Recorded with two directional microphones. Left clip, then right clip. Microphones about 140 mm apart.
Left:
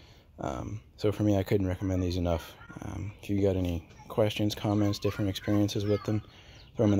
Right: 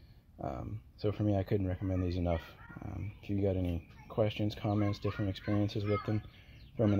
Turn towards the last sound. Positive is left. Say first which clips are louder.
# left 5 dB
turn(degrees=20)  # may be behind; listen again after turning